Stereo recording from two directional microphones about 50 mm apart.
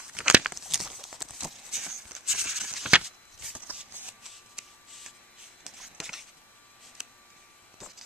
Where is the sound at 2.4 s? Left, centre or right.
Centre.